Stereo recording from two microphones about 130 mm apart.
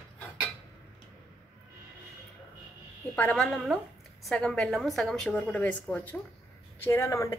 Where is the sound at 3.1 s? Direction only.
15° left (ahead or behind).